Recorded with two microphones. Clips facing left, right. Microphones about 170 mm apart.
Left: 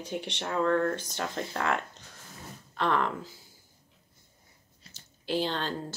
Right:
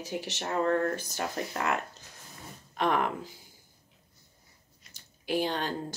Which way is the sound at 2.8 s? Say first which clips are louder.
Even; 15° right (ahead or behind).